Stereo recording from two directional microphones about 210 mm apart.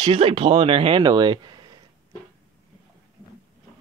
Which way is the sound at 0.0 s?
25° right (ahead or behind).